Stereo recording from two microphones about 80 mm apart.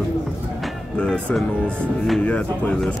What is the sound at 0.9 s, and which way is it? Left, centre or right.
Speech, centre.